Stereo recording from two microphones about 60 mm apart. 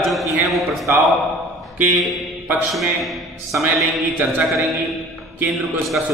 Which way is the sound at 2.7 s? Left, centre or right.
Centre.